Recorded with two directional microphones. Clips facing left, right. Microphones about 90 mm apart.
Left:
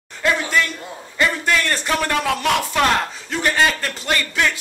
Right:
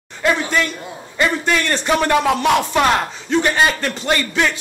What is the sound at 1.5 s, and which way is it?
A man's voice, 20° right (ahead or behind).